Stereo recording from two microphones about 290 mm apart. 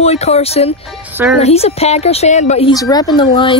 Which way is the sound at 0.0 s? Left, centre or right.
Left.